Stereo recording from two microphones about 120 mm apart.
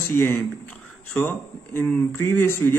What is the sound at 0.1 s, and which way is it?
A man's voice, 20° left (ahead or behind).